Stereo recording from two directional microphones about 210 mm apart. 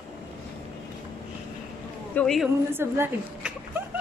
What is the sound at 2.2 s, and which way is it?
Speech, centre (ahead or behind).